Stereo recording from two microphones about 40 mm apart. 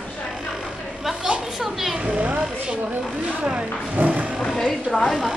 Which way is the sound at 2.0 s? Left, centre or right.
Right.